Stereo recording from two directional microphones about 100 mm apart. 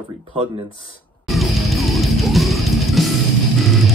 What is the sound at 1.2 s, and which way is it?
Music, centre (ahead or behind).